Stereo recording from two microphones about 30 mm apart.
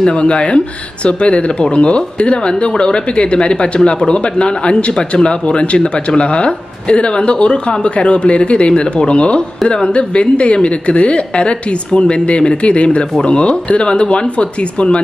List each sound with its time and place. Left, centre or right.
0.0 s a woman's voice: left